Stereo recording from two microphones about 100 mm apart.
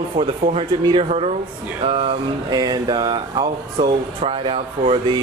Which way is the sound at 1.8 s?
70° right (ahead or behind).